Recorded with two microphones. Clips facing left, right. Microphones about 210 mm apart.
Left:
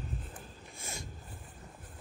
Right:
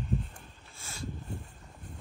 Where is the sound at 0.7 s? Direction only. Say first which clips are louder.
Right 3 dB; 15° left (ahead or behind).